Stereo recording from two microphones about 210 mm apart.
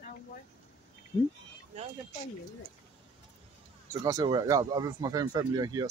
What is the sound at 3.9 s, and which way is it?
Speech, 15° right (ahead or behind).